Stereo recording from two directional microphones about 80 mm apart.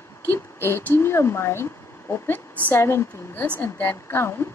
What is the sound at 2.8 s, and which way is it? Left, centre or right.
A woman's voice, left.